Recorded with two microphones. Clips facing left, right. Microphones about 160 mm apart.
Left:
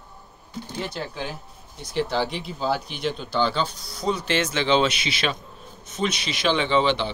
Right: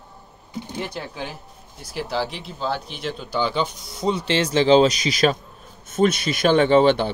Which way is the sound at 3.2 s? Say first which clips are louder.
Right 2 dB; 10° right (ahead or behind).